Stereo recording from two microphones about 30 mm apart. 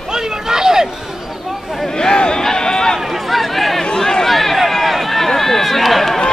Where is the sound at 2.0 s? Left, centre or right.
Left.